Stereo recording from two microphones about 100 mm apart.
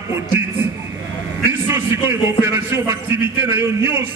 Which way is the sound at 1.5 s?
25° right (ahead or behind).